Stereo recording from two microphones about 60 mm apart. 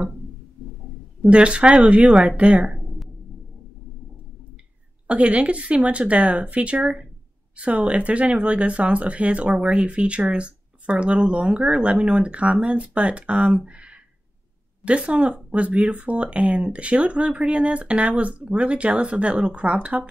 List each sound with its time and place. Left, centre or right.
1.2 s speech: centre
5.0 s speech: right